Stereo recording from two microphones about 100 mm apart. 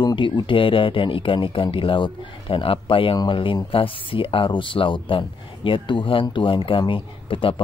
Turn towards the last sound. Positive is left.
turn(degrees=60)  # may be behind; listen again after turning